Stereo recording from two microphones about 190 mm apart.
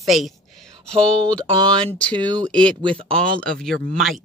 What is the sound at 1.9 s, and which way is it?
Speech, 5° left (ahead or behind).